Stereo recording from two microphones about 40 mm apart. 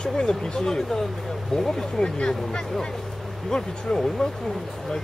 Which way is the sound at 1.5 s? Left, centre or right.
Centre.